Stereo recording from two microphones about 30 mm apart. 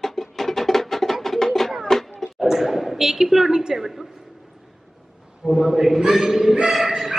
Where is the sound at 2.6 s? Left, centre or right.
Centre.